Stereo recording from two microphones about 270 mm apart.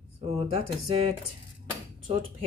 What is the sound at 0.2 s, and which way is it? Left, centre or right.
Speech, right.